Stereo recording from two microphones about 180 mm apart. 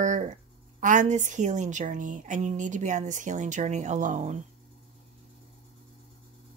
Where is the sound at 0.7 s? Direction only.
45° right (ahead or behind).